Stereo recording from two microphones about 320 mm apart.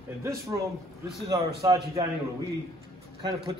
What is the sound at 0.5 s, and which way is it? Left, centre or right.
A man's voice, centre.